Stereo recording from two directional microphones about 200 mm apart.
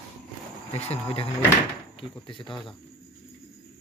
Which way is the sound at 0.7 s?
30° left (ahead or behind).